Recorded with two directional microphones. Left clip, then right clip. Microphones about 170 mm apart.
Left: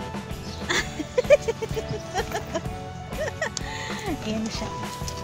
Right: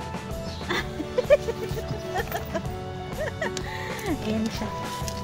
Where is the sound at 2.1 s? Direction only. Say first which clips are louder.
Left 1 dB; 15° left (ahead or behind).